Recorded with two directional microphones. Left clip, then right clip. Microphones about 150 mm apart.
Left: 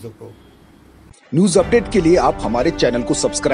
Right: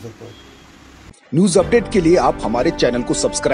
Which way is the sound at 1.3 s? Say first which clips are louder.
Even; centre (ahead or behind).